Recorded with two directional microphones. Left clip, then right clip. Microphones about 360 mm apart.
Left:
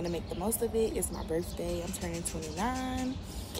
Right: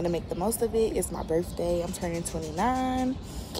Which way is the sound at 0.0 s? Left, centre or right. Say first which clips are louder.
Right 6 dB; centre.